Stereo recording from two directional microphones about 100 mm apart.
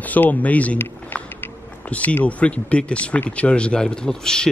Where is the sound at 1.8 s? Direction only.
15° left (ahead or behind).